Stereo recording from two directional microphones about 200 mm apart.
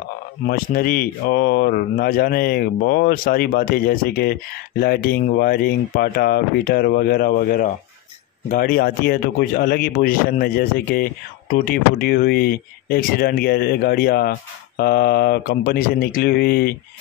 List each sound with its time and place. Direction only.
0.5 s speech: 50° left (ahead or behind)